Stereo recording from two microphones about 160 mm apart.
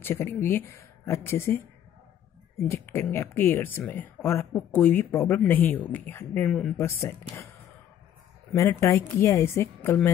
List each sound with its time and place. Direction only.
0.0 s speech: 15° left (ahead or behind)
2.7 s speech: 15° left (ahead or behind)
6.9 s speech: 15° left (ahead or behind)
8.5 s speech: 15° left (ahead or behind)